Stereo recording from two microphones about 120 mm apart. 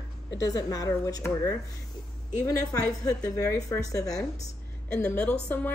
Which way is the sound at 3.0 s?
30° left (ahead or behind).